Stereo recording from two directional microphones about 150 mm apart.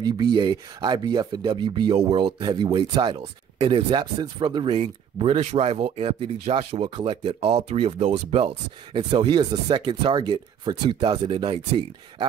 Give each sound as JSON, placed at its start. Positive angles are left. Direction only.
{"t": 0.0, "sound": "speech", "side_deg": -25}